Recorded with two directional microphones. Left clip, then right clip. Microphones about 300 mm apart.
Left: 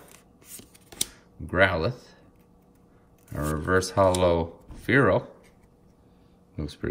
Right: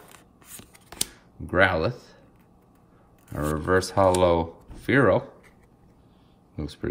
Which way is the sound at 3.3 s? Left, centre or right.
Centre.